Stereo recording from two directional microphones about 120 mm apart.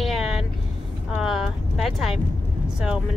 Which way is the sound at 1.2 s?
5° right (ahead or behind).